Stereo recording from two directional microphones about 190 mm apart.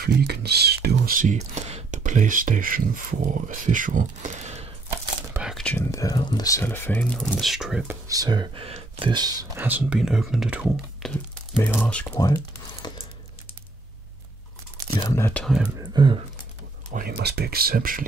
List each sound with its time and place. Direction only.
0.0 s speech: 60° right (ahead or behind); by 4.6 s 35° right (ahead or behind)
5.3 s whispering: centre (ahead or behind)
5.9 s speech: 20° left (ahead or behind); by 8.0 s 5° right (ahead or behind)
8.1 s speech: 20° right (ahead or behind); by 11.1 s 5° right (ahead or behind)
11.8 s speech: 5° left (ahead or behind)
12.9 s crumpling: 20° left (ahead or behind)
15.0 s speech: 15° left (ahead or behind)
15.4 s speech: centre (ahead or behind)
15.9 s speech: 25° right (ahead or behind)
16.9 s speech: 55° right (ahead or behind)